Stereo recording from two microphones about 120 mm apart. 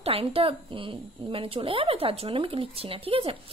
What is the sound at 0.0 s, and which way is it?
A woman's voice, 50° right (ahead or behind).